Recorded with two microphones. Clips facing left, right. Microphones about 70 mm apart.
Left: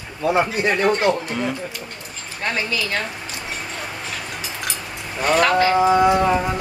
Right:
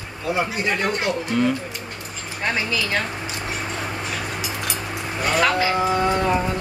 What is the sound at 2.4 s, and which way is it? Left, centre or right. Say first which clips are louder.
Speech: even; centre.